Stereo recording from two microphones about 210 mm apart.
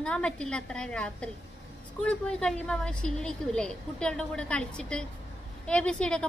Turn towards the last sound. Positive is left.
turn(degrees=5)  # may be behind; listen again after turning